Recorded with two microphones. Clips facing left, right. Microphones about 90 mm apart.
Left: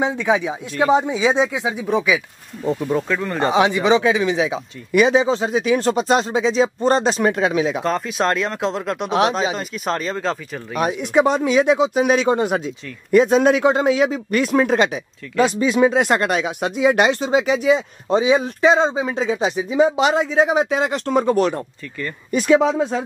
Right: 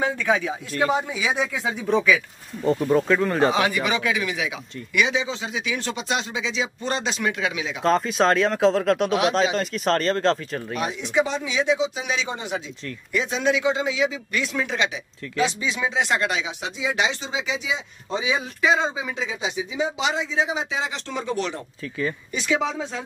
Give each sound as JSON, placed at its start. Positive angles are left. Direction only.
{"t": 0.0, "sound": "speech", "side_deg": 20}
{"t": 2.6, "sound": "speech", "side_deg": 0}
{"t": 3.5, "sound": "speech", "side_deg": 25}
{"t": 7.8, "sound": "speech", "side_deg": 0}
{"t": 10.8, "sound": "speech", "side_deg": 55}